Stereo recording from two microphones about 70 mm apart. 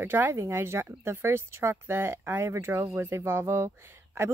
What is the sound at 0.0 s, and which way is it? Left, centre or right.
Speech, right.